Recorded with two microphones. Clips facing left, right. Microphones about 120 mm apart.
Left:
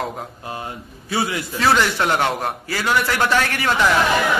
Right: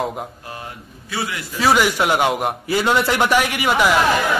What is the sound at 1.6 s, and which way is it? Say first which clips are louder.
Speech: right 2 dB; 10° right (ahead or behind).